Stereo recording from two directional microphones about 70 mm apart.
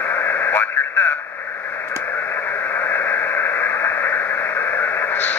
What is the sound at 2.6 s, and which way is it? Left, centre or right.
Radio, left.